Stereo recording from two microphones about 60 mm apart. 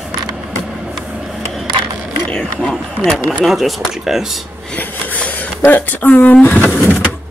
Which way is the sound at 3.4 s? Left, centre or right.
Centre.